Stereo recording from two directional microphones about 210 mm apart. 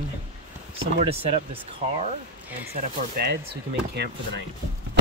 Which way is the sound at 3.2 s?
50° right (ahead or behind).